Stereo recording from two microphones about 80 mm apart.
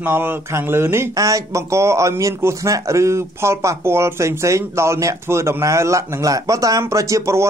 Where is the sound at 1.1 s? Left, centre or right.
Right.